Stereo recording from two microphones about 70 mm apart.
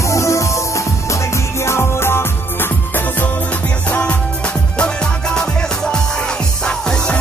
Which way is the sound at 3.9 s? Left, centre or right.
Left.